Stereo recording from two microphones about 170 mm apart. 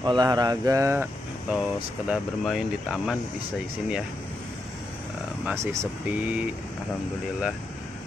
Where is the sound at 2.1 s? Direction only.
Centre (ahead or behind).